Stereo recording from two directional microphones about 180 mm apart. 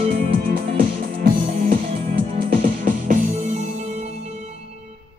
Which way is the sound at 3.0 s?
40° right (ahead or behind).